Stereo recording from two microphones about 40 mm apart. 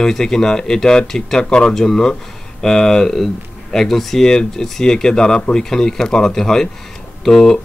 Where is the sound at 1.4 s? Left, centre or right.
Centre.